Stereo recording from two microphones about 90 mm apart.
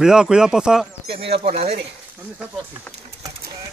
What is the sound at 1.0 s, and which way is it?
Speech, 90° right.